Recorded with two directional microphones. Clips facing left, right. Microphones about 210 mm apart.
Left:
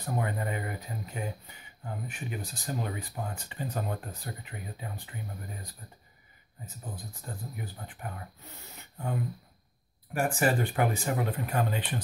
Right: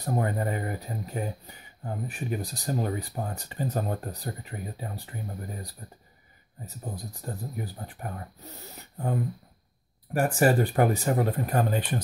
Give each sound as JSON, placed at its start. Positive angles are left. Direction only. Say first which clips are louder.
{"t": 0.0, "sound": "speech", "louder": "right 4 dB", "side_deg": -35}
{"t": 10.1, "sound": "speech", "louder": "right 5 dB", "side_deg": -40}